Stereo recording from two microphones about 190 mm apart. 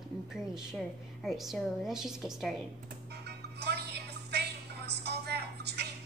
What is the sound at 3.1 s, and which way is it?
Music, 60° right (ahead or behind).